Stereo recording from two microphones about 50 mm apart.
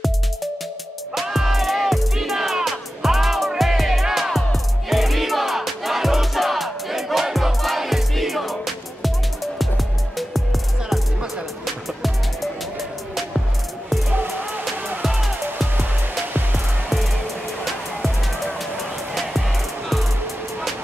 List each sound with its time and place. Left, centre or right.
1.3 s music: centre
15.0 s music: centre
16.5 s music: centre